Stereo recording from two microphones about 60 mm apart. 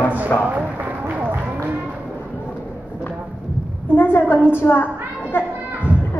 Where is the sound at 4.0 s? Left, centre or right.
Left.